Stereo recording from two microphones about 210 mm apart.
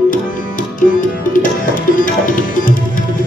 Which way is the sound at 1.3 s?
40° left (ahead or behind).